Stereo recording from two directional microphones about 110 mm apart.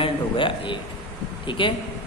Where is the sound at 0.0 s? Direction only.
50° left (ahead or behind).